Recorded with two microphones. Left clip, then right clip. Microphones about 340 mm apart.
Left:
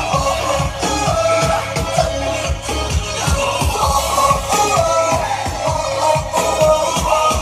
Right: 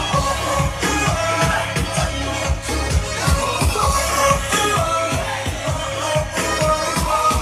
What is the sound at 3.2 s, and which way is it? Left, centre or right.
Music, centre.